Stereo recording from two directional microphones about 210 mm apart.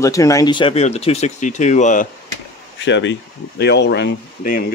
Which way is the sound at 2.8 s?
60° left (ahead or behind).